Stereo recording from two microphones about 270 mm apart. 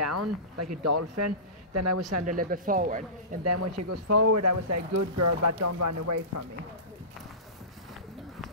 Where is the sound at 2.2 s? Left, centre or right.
Right.